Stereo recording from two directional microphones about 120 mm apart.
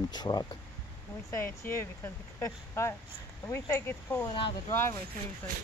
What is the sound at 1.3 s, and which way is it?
Speech, 20° left (ahead or behind).